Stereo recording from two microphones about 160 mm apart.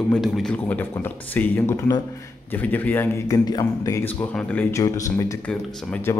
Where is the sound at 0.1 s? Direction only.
5° left (ahead or behind).